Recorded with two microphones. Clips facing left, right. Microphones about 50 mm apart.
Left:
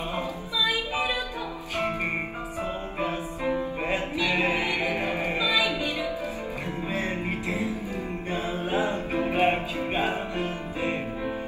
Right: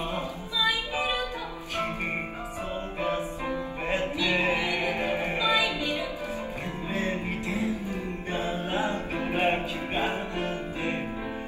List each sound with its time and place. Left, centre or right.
0.7 s music: left
3.0 s music: left
6.9 s music: left